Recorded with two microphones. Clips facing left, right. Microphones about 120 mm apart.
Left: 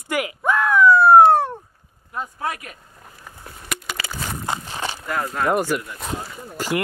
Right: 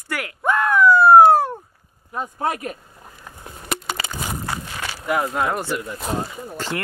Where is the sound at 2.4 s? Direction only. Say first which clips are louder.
Right 6 dB; 30° right (ahead or behind).